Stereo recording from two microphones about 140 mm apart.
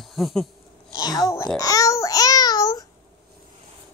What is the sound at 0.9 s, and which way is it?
Babbling, 25° left (ahead or behind).